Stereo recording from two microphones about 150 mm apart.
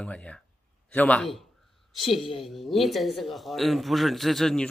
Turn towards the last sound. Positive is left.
turn(degrees=0)  # may be behind; listen again after turning